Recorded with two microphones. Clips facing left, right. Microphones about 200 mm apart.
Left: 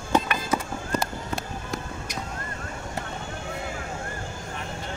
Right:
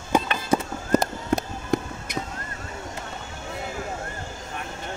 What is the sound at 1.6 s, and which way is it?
Music, 55° right (ahead or behind).